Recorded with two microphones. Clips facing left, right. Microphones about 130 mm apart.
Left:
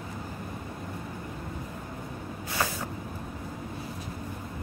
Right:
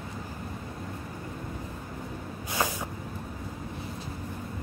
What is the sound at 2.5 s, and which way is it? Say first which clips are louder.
Spray: right 1 dB; 15° right (ahead or behind).